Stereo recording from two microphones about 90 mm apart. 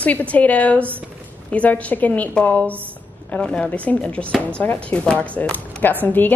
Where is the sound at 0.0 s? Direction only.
15° left (ahead or behind).